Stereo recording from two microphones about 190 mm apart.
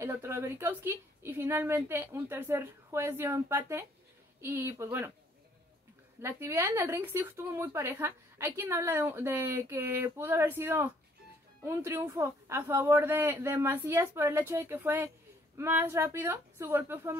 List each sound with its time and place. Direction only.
0.0 s a woman's voice: 15° right (ahead or behind)
6.2 s a woman's voice: 10° right (ahead or behind)